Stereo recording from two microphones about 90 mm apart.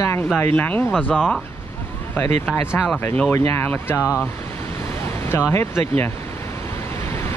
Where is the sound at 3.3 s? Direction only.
30° left (ahead or behind).